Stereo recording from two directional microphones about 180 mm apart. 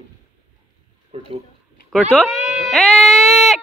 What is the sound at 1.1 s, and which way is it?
Speech, 35° right (ahead or behind).